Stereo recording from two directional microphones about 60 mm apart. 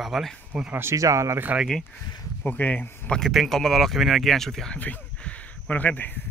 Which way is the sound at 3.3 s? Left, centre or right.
Centre.